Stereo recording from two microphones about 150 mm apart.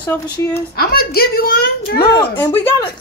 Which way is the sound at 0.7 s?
90° left.